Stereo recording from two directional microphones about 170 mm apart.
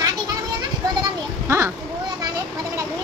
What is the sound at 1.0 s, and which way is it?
Speech, 15° right (ahead or behind).